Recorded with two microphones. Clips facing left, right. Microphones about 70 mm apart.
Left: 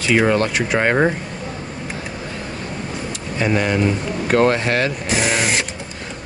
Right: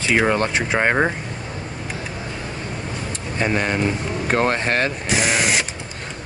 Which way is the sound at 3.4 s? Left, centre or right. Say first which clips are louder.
Left 2 dB; right.